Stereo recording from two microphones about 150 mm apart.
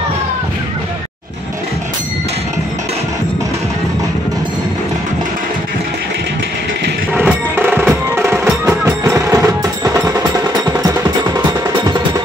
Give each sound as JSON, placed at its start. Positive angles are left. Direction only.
{"t": 7.2, "sound": "music", "side_deg": -10}